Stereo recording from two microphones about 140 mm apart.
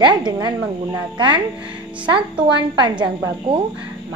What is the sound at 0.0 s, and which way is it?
A woman's voice, 30° right (ahead or behind).